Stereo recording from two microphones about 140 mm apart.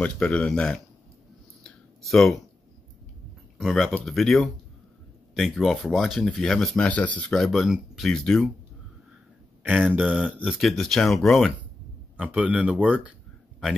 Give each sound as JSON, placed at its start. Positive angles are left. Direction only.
{"t": 0.0, "sound": "speech", "side_deg": 10}
{"t": 1.6, "sound": "a sound", "side_deg": 0}
{"t": 3.5, "sound": "speech", "side_deg": 0}
{"t": 9.6, "sound": "speech", "side_deg": -10}
{"t": 12.2, "sound": "speech", "side_deg": -10}